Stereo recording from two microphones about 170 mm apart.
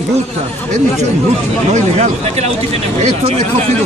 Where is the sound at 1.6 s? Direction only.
40° right (ahead or behind).